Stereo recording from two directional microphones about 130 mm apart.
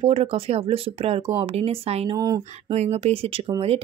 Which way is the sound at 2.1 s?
25° right (ahead or behind).